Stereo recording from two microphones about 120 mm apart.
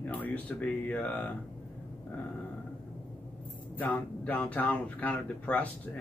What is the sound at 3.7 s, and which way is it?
Speech, 15° left (ahead or behind).